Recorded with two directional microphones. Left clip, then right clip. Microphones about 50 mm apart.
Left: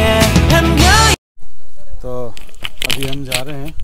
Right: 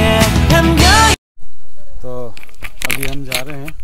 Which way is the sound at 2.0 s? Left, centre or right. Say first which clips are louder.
Left 2 dB; left.